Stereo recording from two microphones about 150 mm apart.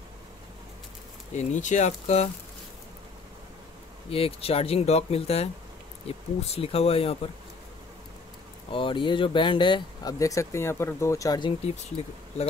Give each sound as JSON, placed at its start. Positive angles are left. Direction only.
{"t": 1.3, "sound": "speech", "side_deg": 50}
{"t": 4.1, "sound": "speech", "side_deg": 40}
{"t": 8.7, "sound": "speech", "side_deg": 35}